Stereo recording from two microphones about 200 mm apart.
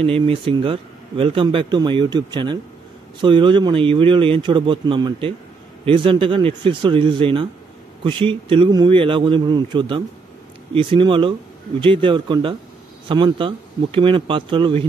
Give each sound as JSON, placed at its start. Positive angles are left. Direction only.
{"t": 0.0, "sound": "speech", "side_deg": -25}